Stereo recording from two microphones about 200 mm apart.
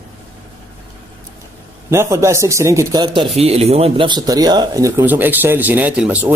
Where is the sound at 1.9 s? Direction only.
15° right (ahead or behind).